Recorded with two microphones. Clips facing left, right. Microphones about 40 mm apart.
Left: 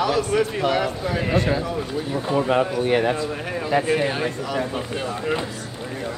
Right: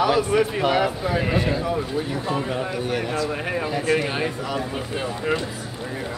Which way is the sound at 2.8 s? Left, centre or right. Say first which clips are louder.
Left 4 dB; left.